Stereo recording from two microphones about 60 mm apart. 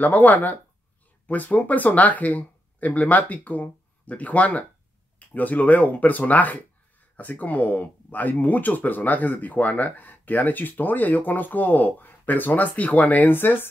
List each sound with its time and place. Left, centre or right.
0.0 s speech: left